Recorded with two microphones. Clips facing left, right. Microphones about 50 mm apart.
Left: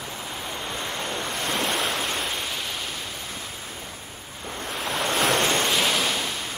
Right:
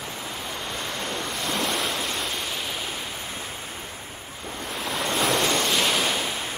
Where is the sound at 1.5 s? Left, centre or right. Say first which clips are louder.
Left 1 dB; centre.